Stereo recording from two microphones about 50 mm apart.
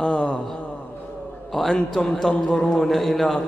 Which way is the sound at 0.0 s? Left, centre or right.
Left.